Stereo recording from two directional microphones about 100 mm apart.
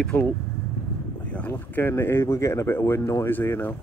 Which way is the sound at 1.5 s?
25° left (ahead or behind).